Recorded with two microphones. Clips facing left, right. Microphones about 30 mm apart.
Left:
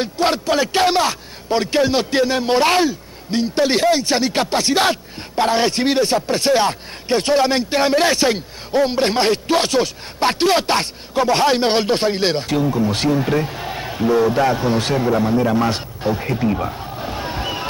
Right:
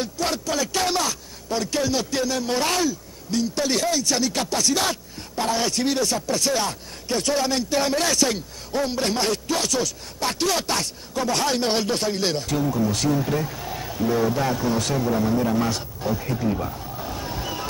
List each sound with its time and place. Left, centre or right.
0.0 s speech: left